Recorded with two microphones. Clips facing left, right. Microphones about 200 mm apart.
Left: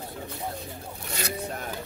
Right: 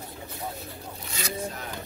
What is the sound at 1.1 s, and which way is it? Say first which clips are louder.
Speech: left 1 dB; 60° left (ahead or behind).